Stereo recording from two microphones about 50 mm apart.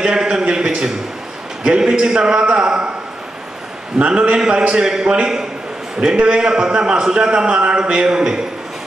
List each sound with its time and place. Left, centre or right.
0.0 s a sound: centre
1.6 s a man's voice: centre
4.0 s a man's voice: right